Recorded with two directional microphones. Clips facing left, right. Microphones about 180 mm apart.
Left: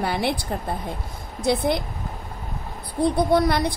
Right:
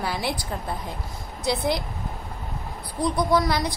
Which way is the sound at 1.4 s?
55° left (ahead or behind).